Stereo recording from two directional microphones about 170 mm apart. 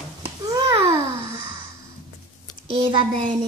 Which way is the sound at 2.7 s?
30° right (ahead or behind).